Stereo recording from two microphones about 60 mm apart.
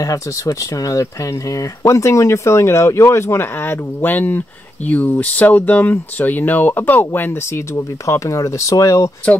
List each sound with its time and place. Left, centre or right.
0.0 s speech: left
4.0 s speech: left
7.7 s speech: left